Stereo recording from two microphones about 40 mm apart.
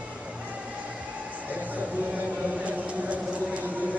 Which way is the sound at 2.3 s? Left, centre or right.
Right.